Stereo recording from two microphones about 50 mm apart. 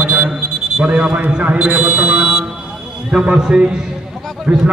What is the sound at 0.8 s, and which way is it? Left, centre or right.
Speech, right.